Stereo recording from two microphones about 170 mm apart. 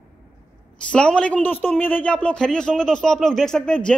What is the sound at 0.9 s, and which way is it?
A woman's voice, 5° left (ahead or behind).